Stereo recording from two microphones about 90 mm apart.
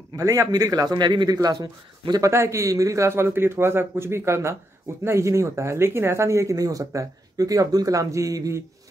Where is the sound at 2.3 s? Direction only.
30° right (ahead or behind).